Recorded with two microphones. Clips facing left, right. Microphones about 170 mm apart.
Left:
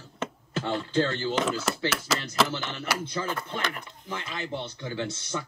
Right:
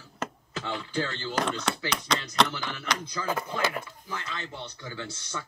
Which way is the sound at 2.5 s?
25° left (ahead or behind).